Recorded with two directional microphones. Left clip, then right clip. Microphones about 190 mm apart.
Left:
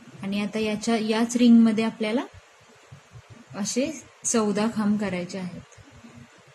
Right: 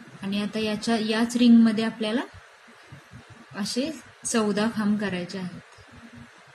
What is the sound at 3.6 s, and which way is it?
Speech, 40° left (ahead or behind).